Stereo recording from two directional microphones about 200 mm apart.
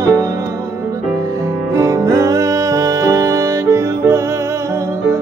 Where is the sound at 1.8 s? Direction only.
15° right (ahead or behind).